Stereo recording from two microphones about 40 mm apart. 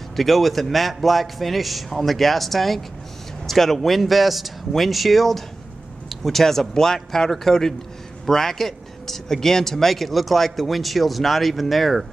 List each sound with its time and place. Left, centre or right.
0.1 s speech: centre